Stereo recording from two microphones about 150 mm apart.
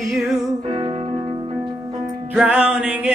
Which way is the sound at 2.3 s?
5° right (ahead or behind).